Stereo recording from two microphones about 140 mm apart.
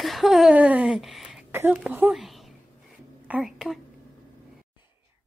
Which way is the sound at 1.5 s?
15° right (ahead or behind).